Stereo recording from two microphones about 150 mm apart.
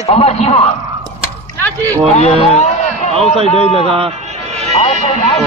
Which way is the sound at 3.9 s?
45° right (ahead or behind).